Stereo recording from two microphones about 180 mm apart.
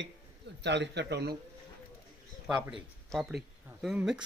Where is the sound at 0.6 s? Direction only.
75° right (ahead or behind).